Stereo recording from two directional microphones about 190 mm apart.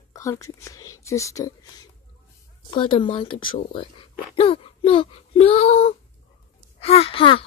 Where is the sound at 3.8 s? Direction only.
30° left (ahead or behind).